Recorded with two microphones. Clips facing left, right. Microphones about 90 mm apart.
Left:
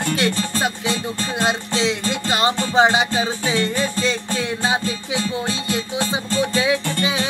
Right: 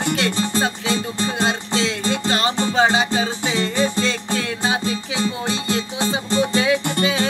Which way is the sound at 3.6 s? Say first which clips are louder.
Right 4 dB; 25° right (ahead or behind).